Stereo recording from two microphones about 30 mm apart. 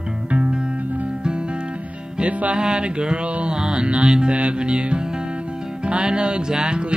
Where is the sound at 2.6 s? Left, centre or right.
Right.